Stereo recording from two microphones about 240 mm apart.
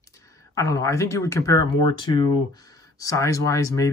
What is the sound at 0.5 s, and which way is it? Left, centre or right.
Speech, centre.